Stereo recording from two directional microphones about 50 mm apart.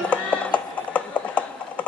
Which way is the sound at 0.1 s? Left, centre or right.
Left.